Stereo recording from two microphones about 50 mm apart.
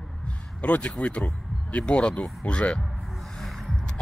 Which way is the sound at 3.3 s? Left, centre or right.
Centre.